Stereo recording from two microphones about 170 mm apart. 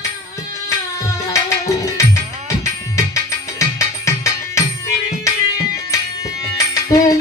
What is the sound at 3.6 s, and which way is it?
Music, 20° left (ahead or behind).